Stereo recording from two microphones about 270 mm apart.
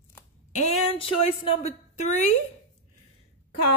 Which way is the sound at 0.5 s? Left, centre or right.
Left.